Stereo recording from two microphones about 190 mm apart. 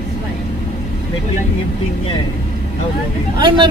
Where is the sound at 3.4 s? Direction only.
25° right (ahead or behind).